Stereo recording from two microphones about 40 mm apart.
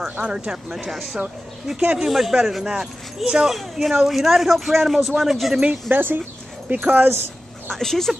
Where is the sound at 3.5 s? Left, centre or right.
Centre.